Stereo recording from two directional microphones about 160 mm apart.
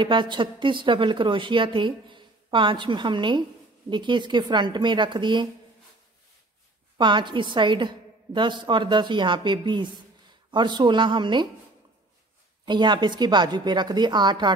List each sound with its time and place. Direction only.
0.0 s a woman's voice: 30° right (ahead or behind)
7.0 s a woman's voice: 30° right (ahead or behind)
12.6 s a woman's voice: 30° right (ahead or behind)